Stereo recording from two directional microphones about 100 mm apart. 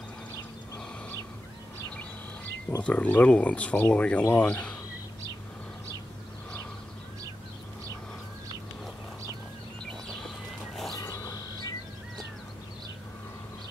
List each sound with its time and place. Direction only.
2.8 s speech: 15° left (ahead or behind)
10.9 s bird: 35° left (ahead or behind)